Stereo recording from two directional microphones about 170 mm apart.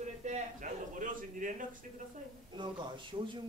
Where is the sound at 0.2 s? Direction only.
45° right (ahead or behind).